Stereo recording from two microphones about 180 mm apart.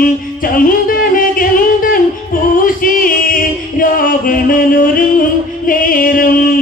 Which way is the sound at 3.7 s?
50° left (ahead or behind).